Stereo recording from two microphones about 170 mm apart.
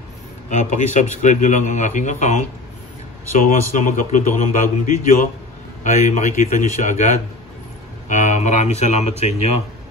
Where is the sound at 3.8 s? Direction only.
50° left (ahead or behind).